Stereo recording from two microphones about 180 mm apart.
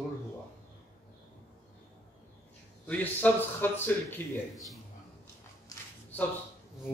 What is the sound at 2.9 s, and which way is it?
A man's voice, 10° left (ahead or behind).